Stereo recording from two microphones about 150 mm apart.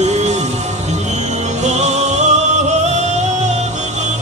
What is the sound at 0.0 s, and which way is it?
Music, 50° right (ahead or behind).